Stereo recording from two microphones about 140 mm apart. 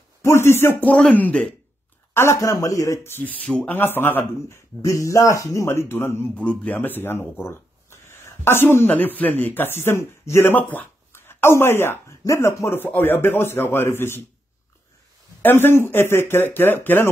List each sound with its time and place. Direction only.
0.2 s speech: 20° left (ahead or behind)
2.1 s speech: 20° left (ahead or behind)
15.4 s speech: 15° left (ahead or behind)